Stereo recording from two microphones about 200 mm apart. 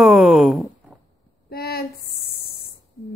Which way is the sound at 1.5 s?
50° left (ahead or behind).